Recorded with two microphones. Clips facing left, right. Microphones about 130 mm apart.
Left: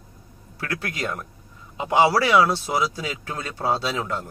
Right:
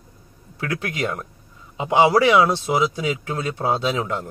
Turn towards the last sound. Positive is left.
turn(degrees=-15)  # may be behind; listen again after turning